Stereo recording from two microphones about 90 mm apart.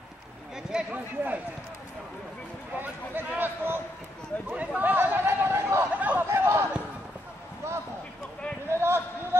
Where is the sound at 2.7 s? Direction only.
20° right (ahead or behind).